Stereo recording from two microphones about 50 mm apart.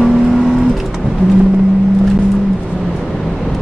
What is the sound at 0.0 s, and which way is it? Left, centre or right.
Vehicle, centre.